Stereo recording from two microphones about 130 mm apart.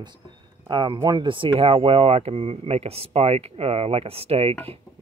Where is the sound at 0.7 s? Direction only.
40° right (ahead or behind).